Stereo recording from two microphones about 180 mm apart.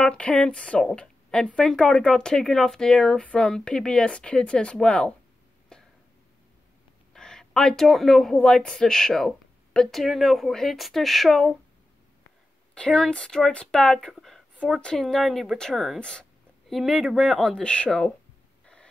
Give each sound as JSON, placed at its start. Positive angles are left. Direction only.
{"t": 0.0, "sound": "speech", "side_deg": 5}
{"t": 5.7, "sound": "a sound", "side_deg": 5}
{"t": 7.2, "sound": "speech", "side_deg": 5}
{"t": 12.7, "sound": "speech", "side_deg": 5}